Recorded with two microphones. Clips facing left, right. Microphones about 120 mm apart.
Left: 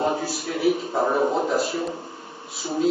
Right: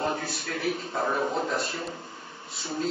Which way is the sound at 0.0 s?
20° left (ahead or behind).